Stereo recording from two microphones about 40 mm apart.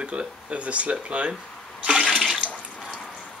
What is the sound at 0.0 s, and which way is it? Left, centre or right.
Speech, right.